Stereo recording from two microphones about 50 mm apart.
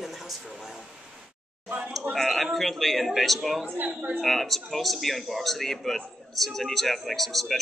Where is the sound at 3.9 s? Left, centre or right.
Right.